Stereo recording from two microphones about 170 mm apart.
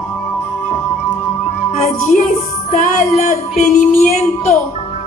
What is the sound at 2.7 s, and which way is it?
Child singing, 45° left (ahead or behind).